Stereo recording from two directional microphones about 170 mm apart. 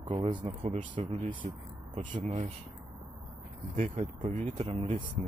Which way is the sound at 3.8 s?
45° right (ahead or behind).